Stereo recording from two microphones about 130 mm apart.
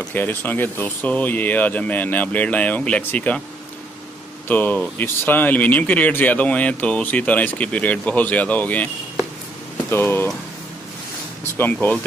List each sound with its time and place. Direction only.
0.1 s speech: 15° left (ahead or behind)
4.5 s speech: 15° left (ahead or behind)
9.8 s speech: 15° left (ahead or behind)
11.5 s speech: 15° left (ahead or behind)